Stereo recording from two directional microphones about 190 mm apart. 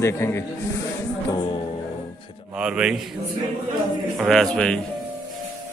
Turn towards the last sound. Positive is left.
turn(degrees=5)  # may be behind; listen again after turning